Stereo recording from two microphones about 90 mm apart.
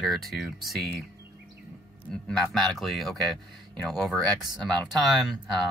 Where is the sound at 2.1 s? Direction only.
5° left (ahead or behind).